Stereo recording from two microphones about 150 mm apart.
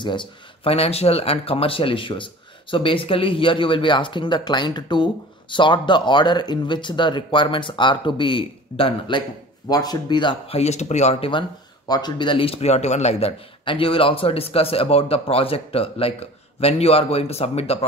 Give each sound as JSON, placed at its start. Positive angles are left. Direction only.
{"t": 0.7, "sound": "speech", "side_deg": 40}
{"t": 10.6, "sound": "speech", "side_deg": 50}